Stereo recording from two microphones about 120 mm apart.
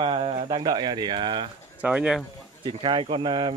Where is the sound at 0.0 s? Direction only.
50° right (ahead or behind).